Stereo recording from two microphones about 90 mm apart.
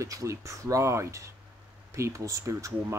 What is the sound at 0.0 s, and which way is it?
Speech, 35° right (ahead or behind).